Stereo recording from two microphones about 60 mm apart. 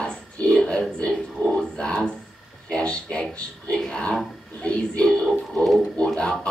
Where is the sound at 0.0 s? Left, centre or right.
Centre.